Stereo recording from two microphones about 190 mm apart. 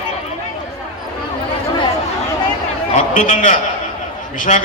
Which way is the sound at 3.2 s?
40° left (ahead or behind).